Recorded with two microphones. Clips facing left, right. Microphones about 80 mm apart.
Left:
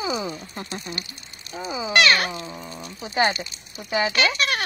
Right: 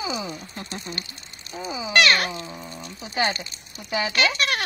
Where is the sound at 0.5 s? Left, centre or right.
Centre.